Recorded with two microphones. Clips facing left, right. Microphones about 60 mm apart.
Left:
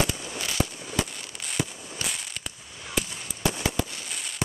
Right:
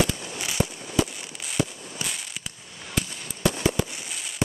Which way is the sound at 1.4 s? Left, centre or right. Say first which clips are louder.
Right 3 dB; centre.